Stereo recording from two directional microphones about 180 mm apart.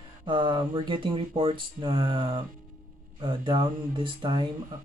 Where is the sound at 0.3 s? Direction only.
25° right (ahead or behind).